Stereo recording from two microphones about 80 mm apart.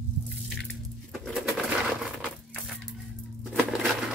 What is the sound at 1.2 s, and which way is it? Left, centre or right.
Pigeon, centre.